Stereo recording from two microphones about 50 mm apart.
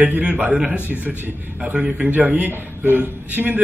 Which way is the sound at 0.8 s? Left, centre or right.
Right.